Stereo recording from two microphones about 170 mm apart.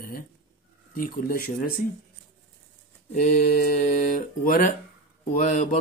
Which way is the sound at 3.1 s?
55° left (ahead or behind).